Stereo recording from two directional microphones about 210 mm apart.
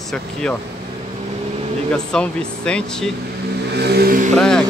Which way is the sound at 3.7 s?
50° right (ahead or behind).